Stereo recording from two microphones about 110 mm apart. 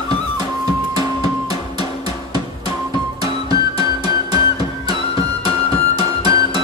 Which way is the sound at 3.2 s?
60° left (ahead or behind).